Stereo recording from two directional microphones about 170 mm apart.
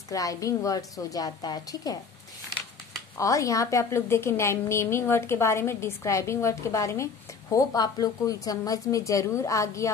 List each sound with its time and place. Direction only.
0.1 s a woman's voice: 20° left (ahead or behind)
3.2 s a woman's voice: 20° left (ahead or behind)